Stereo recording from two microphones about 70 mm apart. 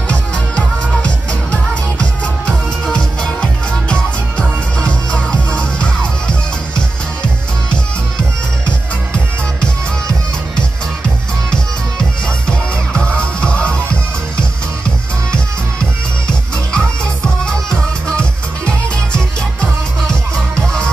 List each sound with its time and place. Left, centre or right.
0.1 s music: centre
12.4 s music: centre
15.3 s music: centre